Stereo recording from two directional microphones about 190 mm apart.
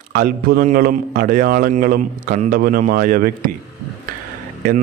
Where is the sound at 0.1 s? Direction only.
50° right (ahead or behind).